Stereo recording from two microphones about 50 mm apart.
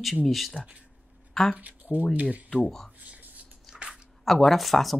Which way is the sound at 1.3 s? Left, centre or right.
Centre.